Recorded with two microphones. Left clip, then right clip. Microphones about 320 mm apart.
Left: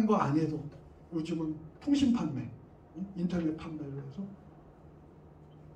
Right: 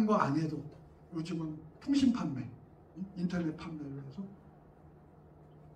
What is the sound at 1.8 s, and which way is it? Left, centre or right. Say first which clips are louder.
A man's voice: left 2 dB; centre.